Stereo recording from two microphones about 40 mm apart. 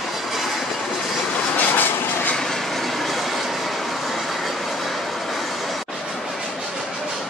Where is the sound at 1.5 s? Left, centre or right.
Left.